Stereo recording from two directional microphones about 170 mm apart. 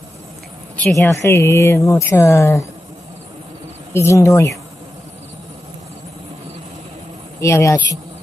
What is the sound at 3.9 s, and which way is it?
Speech, 15° left (ahead or behind).